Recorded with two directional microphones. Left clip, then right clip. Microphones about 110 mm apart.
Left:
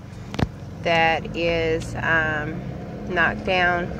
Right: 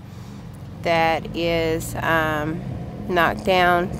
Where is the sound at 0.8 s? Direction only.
60° right (ahead or behind).